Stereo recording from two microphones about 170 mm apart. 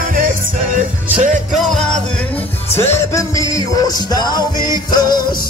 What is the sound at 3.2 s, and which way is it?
Music, 20° left (ahead or behind).